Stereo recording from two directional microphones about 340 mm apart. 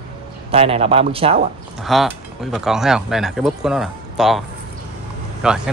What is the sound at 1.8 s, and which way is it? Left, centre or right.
Speech, centre.